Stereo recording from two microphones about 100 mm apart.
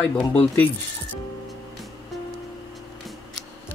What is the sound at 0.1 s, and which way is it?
Speech, 15° left (ahead or behind).